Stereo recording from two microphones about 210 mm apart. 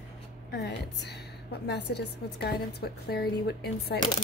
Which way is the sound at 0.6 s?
55° left (ahead or behind).